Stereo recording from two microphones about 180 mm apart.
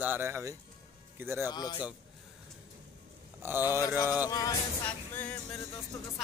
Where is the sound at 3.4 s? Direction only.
10° right (ahead or behind).